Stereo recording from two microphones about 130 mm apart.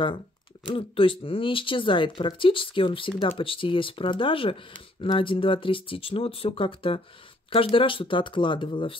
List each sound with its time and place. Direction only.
0.7 s speech: 40° left (ahead or behind)